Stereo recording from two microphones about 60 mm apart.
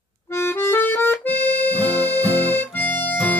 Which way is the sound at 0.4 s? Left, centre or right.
Left.